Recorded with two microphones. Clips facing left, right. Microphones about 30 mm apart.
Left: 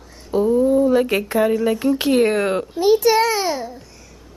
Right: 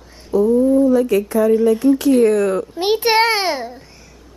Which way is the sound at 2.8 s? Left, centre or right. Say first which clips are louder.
Left 1 dB; right.